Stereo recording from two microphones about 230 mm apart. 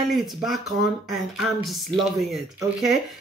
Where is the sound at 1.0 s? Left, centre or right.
Centre.